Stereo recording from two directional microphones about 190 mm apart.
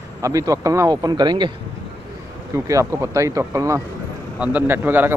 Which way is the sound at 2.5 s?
15° right (ahead or behind).